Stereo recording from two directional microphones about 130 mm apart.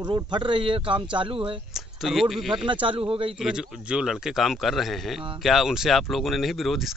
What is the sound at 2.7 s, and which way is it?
Speech, 40° right (ahead or behind).